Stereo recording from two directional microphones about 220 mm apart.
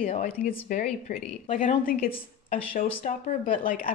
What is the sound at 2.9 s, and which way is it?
Speech, 25° left (ahead or behind).